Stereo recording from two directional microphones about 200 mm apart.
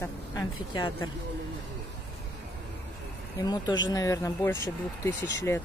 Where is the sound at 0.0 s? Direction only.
15° left (ahead or behind).